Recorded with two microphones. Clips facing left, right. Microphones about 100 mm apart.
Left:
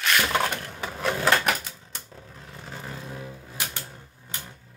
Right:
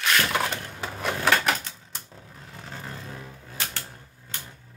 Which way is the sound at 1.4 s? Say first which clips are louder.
Even; 5° left (ahead or behind).